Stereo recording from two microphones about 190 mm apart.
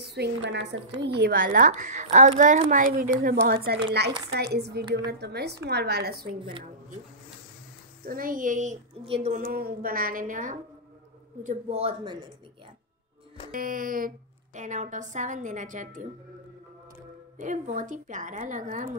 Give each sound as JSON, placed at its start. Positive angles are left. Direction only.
{"t": 0.0, "sound": "a woman's voice", "side_deg": -60}
{"t": 1.0, "sound": "a woman's voice", "side_deg": -60}
{"t": 8.0, "sound": "speech", "side_deg": -50}
{"t": 9.0, "sound": "a woman's voice", "side_deg": -30}
{"t": 9.3, "sound": "a man's voice", "side_deg": -45}
{"t": 13.5, "sound": "a woman's voice", "side_deg": -45}
{"t": 17.4, "sound": "a woman's voice", "side_deg": -40}